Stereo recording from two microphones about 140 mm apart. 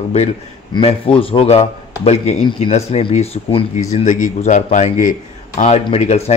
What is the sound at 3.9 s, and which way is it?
Speech, 65° left (ahead or behind).